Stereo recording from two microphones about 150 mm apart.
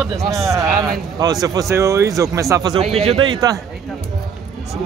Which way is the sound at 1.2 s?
25° right (ahead or behind).